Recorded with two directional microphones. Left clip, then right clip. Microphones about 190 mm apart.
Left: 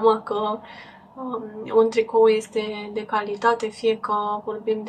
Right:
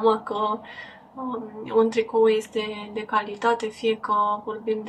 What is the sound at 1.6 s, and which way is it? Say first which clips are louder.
Speech: left 3 dB; centre (ahead or behind).